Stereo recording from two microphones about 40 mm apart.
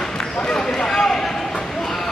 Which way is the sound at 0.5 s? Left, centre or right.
Centre.